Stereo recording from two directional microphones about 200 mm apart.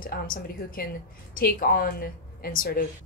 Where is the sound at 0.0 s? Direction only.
45° left (ahead or behind).